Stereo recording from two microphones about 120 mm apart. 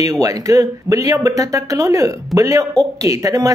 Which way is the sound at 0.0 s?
30° right (ahead or behind).